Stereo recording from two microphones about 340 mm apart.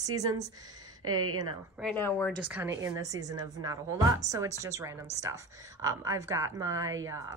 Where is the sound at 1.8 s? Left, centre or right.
Centre.